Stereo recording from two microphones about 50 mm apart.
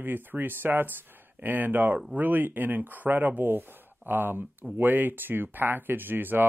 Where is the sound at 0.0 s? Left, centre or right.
Right.